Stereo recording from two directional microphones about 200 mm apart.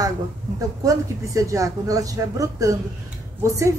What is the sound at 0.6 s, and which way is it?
A woman's voice, 15° right (ahead or behind).